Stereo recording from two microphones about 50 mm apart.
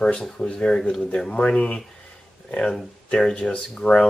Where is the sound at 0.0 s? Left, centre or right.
Centre.